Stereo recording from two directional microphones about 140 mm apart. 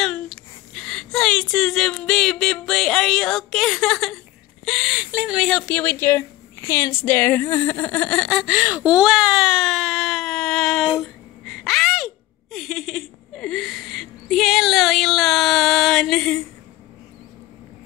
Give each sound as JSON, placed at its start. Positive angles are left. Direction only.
{"t": 0.0, "sound": "speech", "side_deg": 5}
{"t": 5.8, "sound": "speech", "side_deg": 15}
{"t": 6.7, "sound": "a sound", "side_deg": 20}